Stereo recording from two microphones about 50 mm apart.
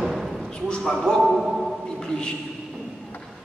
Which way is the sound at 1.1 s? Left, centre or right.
Centre.